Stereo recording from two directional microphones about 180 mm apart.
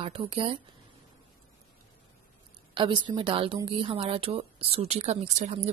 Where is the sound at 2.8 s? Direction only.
25° right (ahead or behind).